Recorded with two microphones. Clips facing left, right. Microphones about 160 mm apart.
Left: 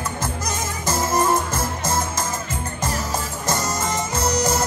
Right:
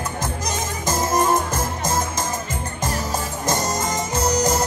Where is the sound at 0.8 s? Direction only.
15° right (ahead or behind).